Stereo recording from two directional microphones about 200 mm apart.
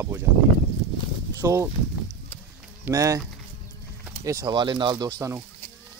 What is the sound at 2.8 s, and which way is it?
Speech, 15° right (ahead or behind).